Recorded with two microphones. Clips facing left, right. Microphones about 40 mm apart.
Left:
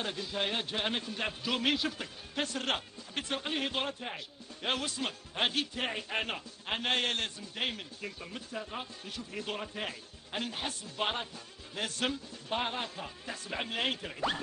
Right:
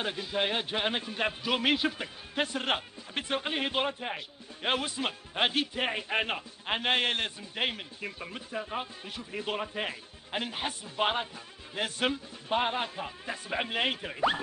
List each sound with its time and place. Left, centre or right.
0.0 s a man's voice: right